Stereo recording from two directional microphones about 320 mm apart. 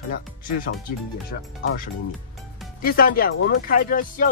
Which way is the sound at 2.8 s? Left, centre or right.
Left.